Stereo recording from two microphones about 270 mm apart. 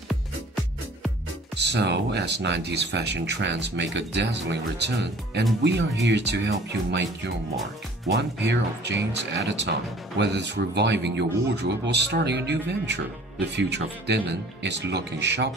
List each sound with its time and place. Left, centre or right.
1.6 s speech: right